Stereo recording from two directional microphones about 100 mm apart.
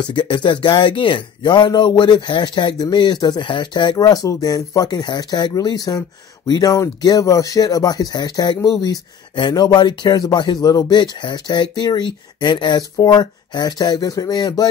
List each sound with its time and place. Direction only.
0.0 s speech: 50° left (ahead or behind)